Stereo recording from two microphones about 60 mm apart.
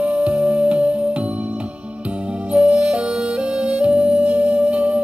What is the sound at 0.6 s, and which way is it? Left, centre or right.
Music, right.